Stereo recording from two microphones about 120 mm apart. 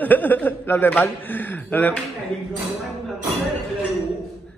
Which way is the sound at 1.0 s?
15° left (ahead or behind).